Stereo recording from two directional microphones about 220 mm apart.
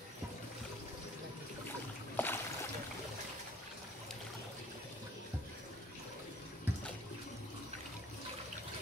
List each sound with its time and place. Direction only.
2.1 s boat: 10° left (ahead or behind)